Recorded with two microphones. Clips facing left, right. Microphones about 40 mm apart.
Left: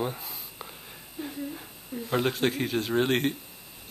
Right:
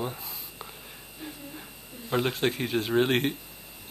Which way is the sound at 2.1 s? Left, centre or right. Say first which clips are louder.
Even; centre.